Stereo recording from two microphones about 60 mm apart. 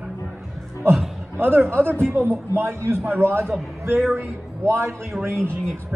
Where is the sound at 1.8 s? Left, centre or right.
Right.